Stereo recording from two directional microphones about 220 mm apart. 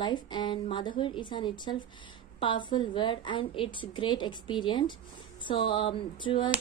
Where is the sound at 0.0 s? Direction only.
20° left (ahead or behind).